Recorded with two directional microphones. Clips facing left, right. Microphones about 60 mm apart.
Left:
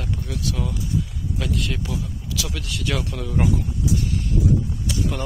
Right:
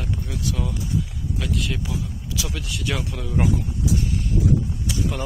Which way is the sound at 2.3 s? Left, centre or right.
Right.